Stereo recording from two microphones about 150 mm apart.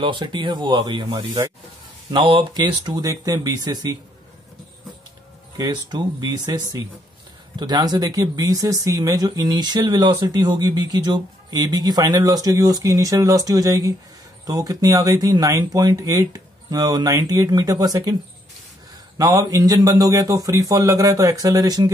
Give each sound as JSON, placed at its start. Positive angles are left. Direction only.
{"t": 0.0, "sound": "speech", "side_deg": -30}
{"t": 5.6, "sound": "speech", "side_deg": -25}
{"t": 19.1, "sound": "speech", "side_deg": -25}